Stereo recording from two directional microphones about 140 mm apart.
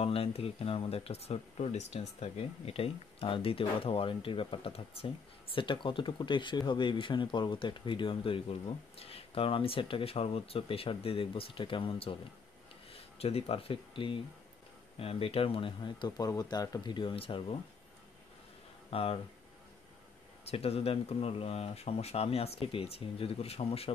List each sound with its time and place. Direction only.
0.0 s speech: 45° left (ahead or behind)
13.2 s speech: 45° left (ahead or behind)
18.9 s speech: 45° left (ahead or behind)
20.4 s speech: 45° left (ahead or behind)